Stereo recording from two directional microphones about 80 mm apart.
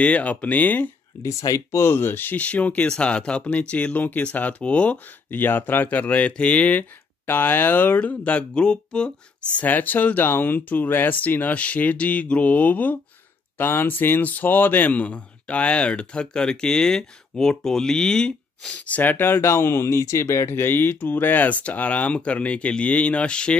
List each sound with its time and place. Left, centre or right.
0.0 s speech: centre
1.2 s speech: left; by 23.6 s centre